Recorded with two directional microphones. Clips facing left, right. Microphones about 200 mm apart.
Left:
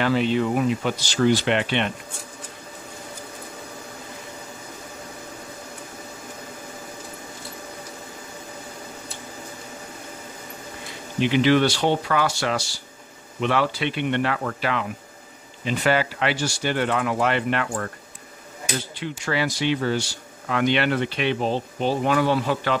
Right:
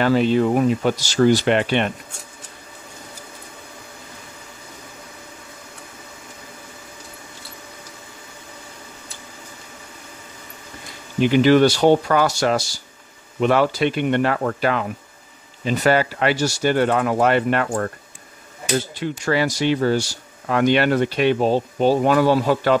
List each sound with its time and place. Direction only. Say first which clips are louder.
0.0 s speech: right 4 dB; 40° right (ahead or behind)
11.1 s speech: right 4 dB; 45° right (ahead or behind)
18.9 s speech: right 2 dB; 45° right (ahead or behind)